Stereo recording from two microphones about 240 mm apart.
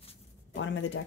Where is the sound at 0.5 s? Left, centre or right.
Left.